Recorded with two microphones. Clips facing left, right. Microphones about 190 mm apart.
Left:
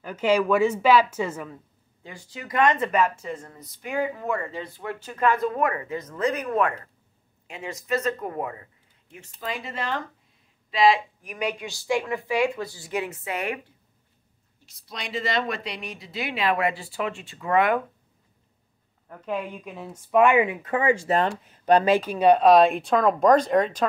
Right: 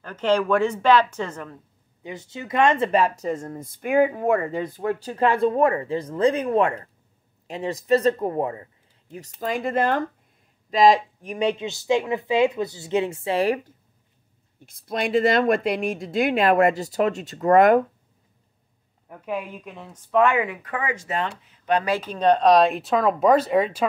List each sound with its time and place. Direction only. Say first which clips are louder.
0.0 s speech: even; 10° left (ahead or behind)
2.0 s speech: right 5 dB; 25° right (ahead or behind)
9.4 s speech: right 9 dB; 50° right (ahead or behind)
10.7 s speech: right 3 dB; 40° right (ahead or behind)
11.2 s speech: right 6 dB; 30° right (ahead or behind)
14.7 s speech: right 11 dB; 50° right (ahead or behind)
19.0 s speech: even; 5° right (ahead or behind); by 21.8 s 40° left (ahead or behind)
22.0 s speech: left 1 dB; 10° left (ahead or behind); by 23.9 s 5° right (ahead or behind)